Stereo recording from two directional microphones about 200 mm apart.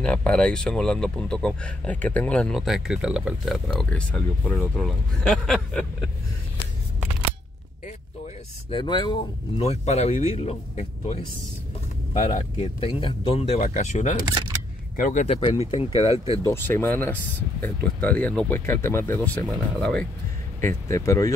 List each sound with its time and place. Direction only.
0.0 s speech: 5° left (ahead or behind)
8.6 s speech: 25° left (ahead or behind); by 15.3 s 40° left (ahead or behind)
15.3 s speech: 25° left (ahead or behind)
16.4 s speech: 10° left (ahead or behind)
20.6 s speech: 15° left (ahead or behind)